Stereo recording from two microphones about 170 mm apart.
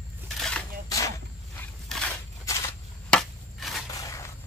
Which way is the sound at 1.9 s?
Centre (ahead or behind).